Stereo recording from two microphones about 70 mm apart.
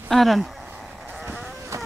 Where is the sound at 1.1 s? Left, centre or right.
Centre.